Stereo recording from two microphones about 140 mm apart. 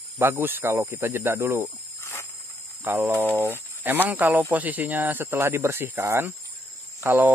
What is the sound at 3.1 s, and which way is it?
Speech, 15° right (ahead or behind).